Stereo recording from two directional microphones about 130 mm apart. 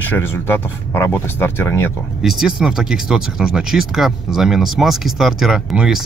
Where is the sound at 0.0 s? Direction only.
15° left (ahead or behind).